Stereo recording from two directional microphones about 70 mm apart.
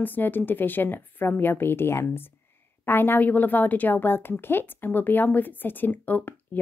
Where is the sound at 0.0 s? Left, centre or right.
Left.